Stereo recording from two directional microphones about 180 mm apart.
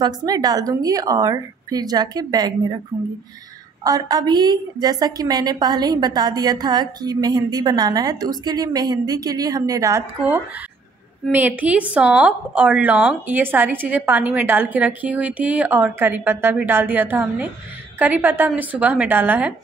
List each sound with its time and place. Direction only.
0.0 s a woman's voice: 20° right (ahead or behind)
2.9 s a woman's voice: 10° right (ahead or behind)
3.8 s a woman's voice: 20° right (ahead or behind)